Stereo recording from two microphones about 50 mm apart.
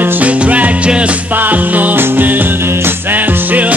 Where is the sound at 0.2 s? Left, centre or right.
Right.